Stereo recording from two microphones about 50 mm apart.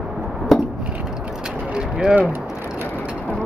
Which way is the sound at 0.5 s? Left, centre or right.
Centre.